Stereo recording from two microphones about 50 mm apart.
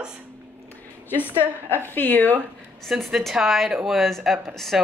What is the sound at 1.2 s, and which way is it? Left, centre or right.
Speech, right.